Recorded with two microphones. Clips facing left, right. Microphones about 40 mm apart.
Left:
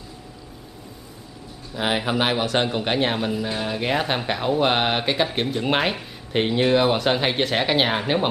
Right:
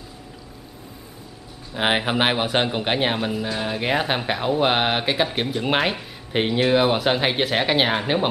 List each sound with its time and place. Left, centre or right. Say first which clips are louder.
1.7 s speech: right 2 dB; right; by 8.3 s centre